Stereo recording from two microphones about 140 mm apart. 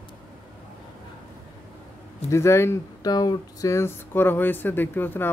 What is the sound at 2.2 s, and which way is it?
Speech, 20° left (ahead or behind).